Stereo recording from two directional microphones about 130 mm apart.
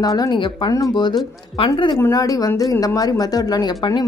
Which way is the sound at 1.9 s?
25° left (ahead or behind).